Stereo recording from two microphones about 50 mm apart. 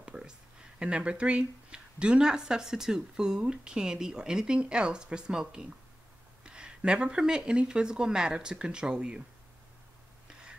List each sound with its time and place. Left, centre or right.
0.0 s speech: centre